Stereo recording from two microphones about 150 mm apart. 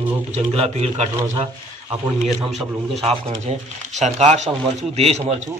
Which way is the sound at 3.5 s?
45° right (ahead or behind).